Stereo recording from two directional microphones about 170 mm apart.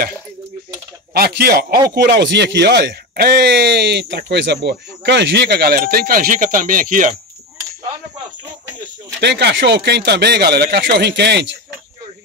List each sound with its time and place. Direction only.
1.1 s a man's voice: 65° right (ahead or behind)
2.0 s speech: 85° right; by 7.2 s 50° right (ahead or behind)
9.2 s speech: 85° right